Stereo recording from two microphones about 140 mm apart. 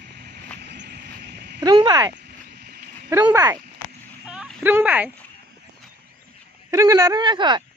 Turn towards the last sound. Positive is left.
turn(degrees=-35)  # may be behind; listen again after turning